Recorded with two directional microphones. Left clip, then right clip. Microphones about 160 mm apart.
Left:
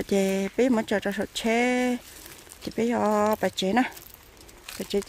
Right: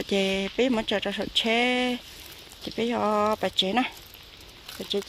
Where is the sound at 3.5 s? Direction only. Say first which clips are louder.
Even; 45° left (ahead or behind).